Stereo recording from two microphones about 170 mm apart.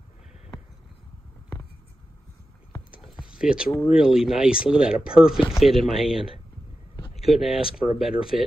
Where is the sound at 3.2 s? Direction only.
5° right (ahead or behind).